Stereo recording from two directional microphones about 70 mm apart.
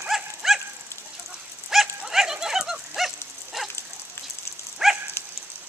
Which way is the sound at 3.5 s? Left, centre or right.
Centre.